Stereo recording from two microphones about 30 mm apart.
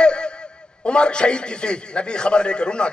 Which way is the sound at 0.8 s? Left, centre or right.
Left.